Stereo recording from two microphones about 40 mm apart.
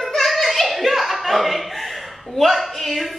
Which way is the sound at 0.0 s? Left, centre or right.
Centre.